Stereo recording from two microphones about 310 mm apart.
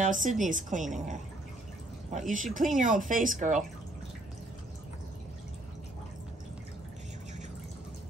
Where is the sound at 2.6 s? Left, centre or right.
Right.